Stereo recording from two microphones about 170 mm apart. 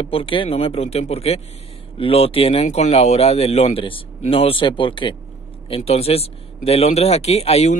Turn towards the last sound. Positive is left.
turn(degrees=40)  # may be behind; listen again after turning